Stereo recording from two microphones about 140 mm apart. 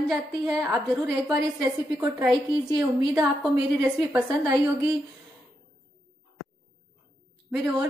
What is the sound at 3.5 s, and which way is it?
A woman's voice, 15° right (ahead or behind).